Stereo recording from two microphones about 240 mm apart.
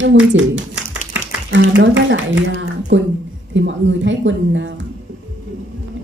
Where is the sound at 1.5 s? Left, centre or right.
Right.